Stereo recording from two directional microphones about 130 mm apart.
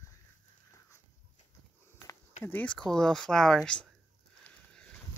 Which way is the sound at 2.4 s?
10° left (ahead or behind).